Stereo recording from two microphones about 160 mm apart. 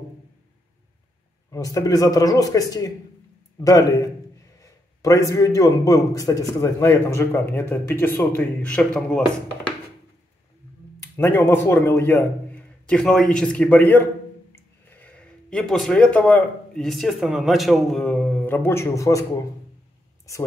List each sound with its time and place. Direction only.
1.5 s a man's voice: 20° left (ahead or behind)
11.0 s a man's voice: 15° left (ahead or behind)